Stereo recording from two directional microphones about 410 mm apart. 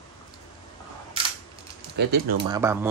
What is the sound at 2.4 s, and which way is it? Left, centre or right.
Speech, centre.